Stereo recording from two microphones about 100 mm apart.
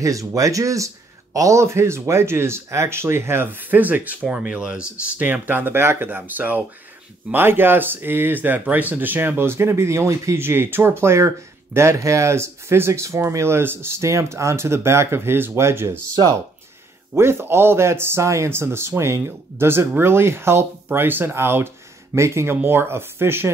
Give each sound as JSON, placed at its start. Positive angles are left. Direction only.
{"t": 0.0, "sound": "speech", "side_deg": -35}
{"t": 17.1, "sound": "speech", "side_deg": -25}